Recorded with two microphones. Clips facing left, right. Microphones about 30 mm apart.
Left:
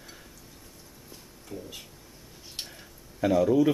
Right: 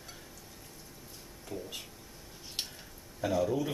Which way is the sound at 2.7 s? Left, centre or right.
Centre.